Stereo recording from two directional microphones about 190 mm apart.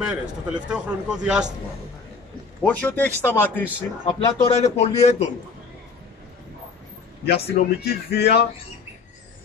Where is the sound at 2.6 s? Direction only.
10° left (ahead or behind).